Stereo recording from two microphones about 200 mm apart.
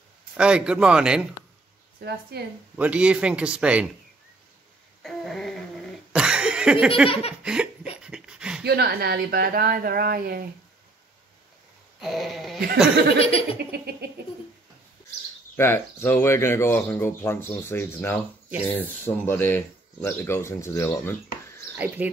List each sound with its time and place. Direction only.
0.4 s a man's voice: 5° right (ahead or behind)
2.0 s speech: 55° right (ahead or behind)
2.7 s a man's voice: 5° right (ahead or behind)
5.0 s a man's voice: centre (ahead or behind)
6.1 s cough: 5° right (ahead or behind)
7.1 s laughter: 30° left (ahead or behind)
8.0 s a sound: 5° right (ahead or behind)
8.6 s speech: 55° right (ahead or behind)
12.0 s a man's voice: centre (ahead or behind)
13.2 s speech: 30° left (ahead or behind)
13.6 s speech: 55° right (ahead or behind)
15.5 s speech: 10° left (ahead or behind)
21.7 s speech: 10° right (ahead or behind)